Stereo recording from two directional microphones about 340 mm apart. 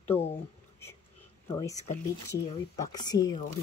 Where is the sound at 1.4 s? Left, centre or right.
Centre.